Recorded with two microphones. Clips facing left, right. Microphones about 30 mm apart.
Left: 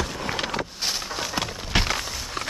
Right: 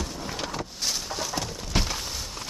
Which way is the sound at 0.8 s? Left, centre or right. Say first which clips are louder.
Left 2 dB; left.